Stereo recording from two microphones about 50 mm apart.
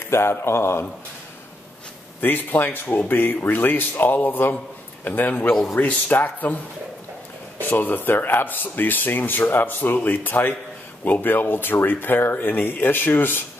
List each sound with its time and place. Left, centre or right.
0.1 s speech: left
2.1 s a man's voice: left
5.5 s speech: centre
5.8 s speech: left